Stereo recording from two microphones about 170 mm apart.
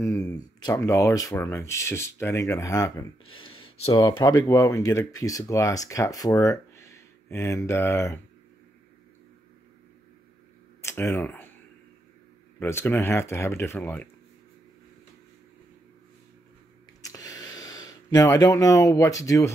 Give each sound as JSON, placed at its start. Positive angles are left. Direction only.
{"t": 0.0, "sound": "speech", "side_deg": 15}
{"t": 4.0, "sound": "speech", "side_deg": 25}
{"t": 10.8, "sound": "speech", "side_deg": 15}
{"t": 12.5, "sound": "speech", "side_deg": 15}
{"t": 17.0, "sound": "a sound", "side_deg": 20}